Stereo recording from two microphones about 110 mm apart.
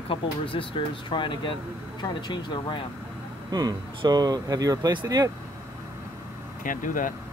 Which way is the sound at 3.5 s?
35° right (ahead or behind).